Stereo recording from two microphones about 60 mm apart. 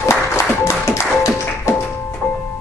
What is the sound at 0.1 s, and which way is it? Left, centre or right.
Music, left.